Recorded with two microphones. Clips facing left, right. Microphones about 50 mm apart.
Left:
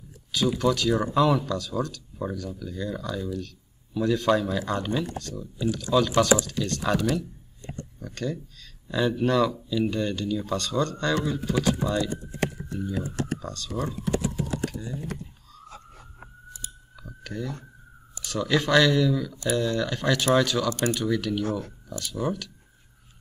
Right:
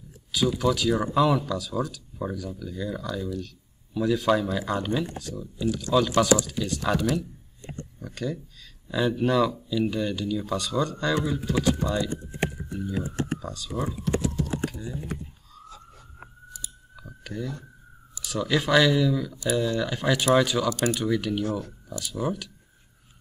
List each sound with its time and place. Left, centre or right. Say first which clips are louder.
0.6 s speech: left 1 dB; centre
6.1 s speech: even; centre
6.4 s speech: even; centre
12.0 s typing: left 1 dB; right
12.9 s speech: right 1 dB; right
13.4 s speech: even; centre
14.2 s speech: right 1 dB; centre
14.7 s a sound: even; centre
16.9 s a sound: even; centre
18.2 s speech: left 1 dB; centre
21.5 s speech: even; left
21.9 s speech: even; centre